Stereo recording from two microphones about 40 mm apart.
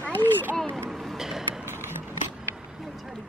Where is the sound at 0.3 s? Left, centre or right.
Right.